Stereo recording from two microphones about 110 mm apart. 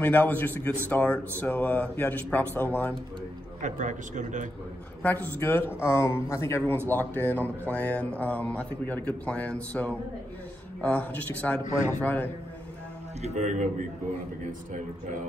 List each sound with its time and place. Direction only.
0.0 s a man's voice: 15° left (ahead or behind)
5.0 s a man's voice: 15° left (ahead or behind)
13.2 s a man's voice: 90° right